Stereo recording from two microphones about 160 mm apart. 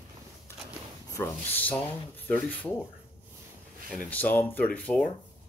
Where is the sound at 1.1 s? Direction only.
10° left (ahead or behind).